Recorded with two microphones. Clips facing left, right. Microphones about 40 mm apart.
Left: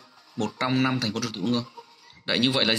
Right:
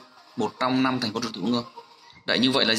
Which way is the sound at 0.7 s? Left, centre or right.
Left.